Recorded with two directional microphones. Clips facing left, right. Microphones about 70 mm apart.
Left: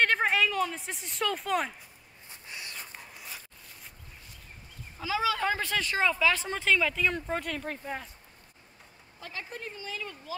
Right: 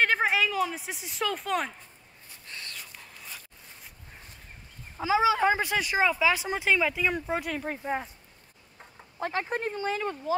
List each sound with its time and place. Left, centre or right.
0.0 s speech: centre
2.2 s a sound: centre
4.9 s speech: right
7.8 s speech: right
9.2 s speech: right